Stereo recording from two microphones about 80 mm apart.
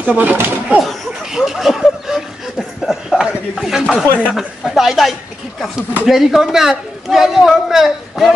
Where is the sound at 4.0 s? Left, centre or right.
Left.